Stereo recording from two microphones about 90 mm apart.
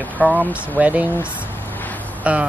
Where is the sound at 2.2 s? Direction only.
15° right (ahead or behind).